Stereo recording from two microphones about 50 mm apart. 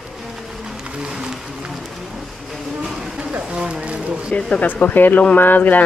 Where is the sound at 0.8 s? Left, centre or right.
Centre.